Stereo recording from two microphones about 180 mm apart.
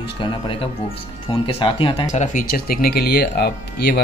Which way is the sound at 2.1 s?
45° left (ahead or behind).